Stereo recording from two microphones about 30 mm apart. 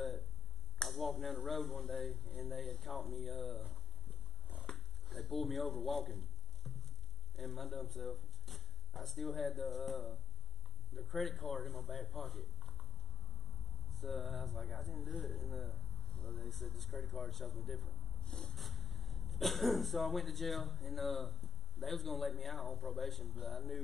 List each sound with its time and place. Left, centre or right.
0.8 s speech: centre
4.7 s a sound: centre
7.3 s speech: centre
13.8 s speech: centre
18.2 s a sound: left
18.5 s speech: centre